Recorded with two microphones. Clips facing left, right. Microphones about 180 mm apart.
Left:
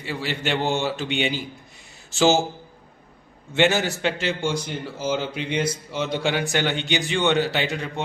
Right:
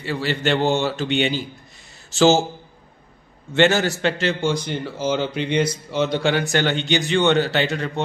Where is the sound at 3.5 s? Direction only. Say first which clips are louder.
Right 3 dB; 15° left (ahead or behind).